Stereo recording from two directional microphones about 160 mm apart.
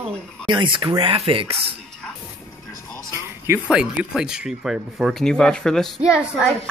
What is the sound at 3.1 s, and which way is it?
Speech, 15° right (ahead or behind).